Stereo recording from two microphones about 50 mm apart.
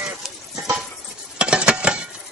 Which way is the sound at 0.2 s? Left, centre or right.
Centre.